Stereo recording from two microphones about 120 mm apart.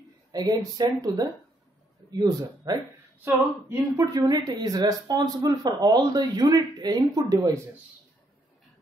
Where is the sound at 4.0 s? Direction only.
30° right (ahead or behind).